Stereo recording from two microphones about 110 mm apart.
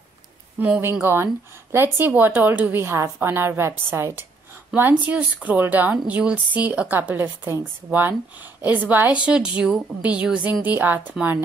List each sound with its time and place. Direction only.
0.6 s a woman's voice: 20° right (ahead or behind)